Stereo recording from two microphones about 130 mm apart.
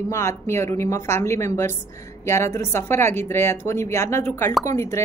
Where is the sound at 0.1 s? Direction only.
20° left (ahead or behind).